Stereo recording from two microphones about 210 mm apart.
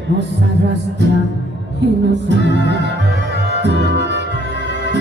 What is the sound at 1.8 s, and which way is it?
Music, 55° right (ahead or behind).